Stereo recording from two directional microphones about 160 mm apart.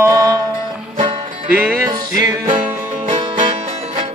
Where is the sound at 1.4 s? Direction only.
10° right (ahead or behind).